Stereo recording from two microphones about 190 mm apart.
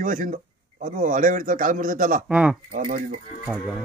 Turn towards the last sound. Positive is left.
turn(degrees=-10)  # may be behind; listen again after turning